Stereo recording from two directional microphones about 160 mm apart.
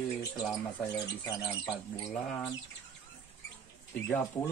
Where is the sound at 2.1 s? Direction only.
5° left (ahead or behind).